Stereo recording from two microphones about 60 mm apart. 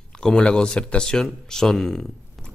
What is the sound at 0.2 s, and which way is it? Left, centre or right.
Speech, centre.